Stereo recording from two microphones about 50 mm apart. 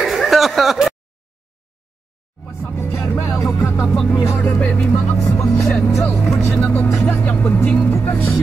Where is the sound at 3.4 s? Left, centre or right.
Left.